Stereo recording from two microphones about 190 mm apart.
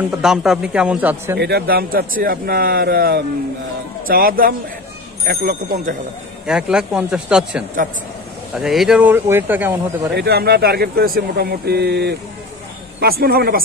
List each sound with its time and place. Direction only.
0.2 s a man's voice: 5° right (ahead or behind)
1.4 s speech: 55° right (ahead or behind)
6.4 s a man's voice: 5° right (ahead or behind)
10.1 s speech: 55° right (ahead or behind)